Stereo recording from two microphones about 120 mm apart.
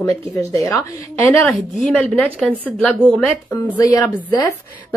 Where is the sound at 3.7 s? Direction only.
25° left (ahead or behind).